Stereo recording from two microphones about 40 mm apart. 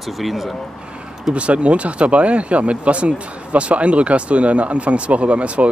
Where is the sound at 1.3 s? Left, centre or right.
Right.